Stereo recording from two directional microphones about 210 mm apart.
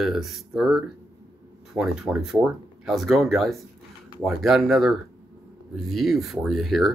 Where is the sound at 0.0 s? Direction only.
Centre (ahead or behind).